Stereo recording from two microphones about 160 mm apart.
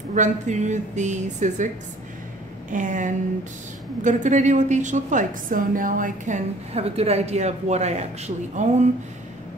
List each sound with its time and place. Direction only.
0.1 s a woman's voice: 50° right (ahead or behind)
2.7 s a woman's voice: 55° right (ahead or behind)